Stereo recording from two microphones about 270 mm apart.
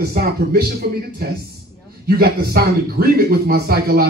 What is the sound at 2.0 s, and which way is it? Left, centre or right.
Speech, right.